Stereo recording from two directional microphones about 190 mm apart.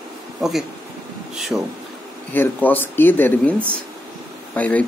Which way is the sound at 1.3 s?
Centre (ahead or behind).